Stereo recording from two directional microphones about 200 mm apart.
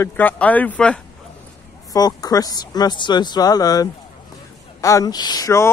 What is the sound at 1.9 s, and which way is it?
Speech, 20° left (ahead or behind).